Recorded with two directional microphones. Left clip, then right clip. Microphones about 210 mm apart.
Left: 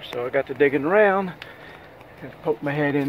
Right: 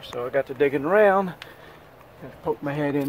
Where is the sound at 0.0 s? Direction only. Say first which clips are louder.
Left 1 dB; 15° right (ahead or behind).